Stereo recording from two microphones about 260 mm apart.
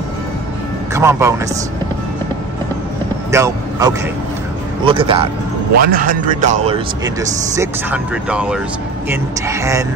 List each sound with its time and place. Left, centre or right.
0.9 s a man's voice: centre
3.3 s speech: centre
5.8 s speech: right
7.2 s speech: centre